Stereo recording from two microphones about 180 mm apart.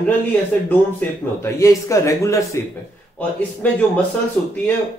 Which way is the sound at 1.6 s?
15° left (ahead or behind).